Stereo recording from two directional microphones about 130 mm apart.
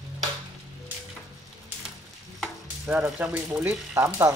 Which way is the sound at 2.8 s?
5° right (ahead or behind).